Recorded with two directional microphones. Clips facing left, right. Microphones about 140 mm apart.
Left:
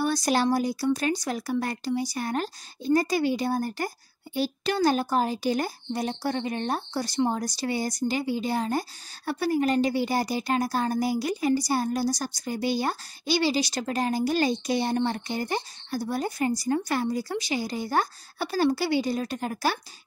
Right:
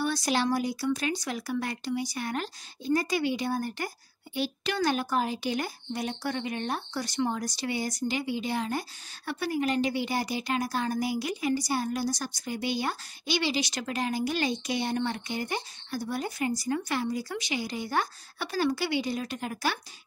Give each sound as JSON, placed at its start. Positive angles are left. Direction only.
{"t": 0.0, "sound": "a woman's voice", "side_deg": 40}